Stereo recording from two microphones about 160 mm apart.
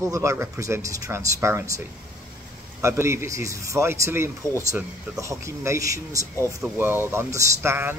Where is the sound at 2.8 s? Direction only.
15° right (ahead or behind).